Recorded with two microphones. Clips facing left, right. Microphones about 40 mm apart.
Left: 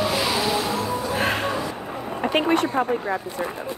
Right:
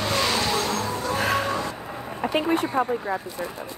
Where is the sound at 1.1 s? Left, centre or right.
Left.